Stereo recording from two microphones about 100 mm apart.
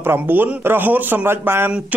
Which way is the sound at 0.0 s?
20° right (ahead or behind).